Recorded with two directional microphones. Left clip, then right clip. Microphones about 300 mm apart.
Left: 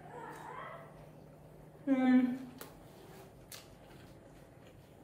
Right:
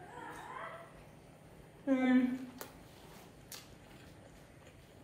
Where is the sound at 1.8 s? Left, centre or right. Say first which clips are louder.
Left 1 dB; centre.